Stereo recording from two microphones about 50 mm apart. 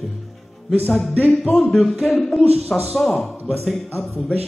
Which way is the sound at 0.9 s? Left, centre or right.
Centre.